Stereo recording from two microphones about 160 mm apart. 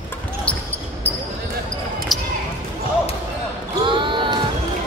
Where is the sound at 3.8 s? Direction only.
30° right (ahead or behind).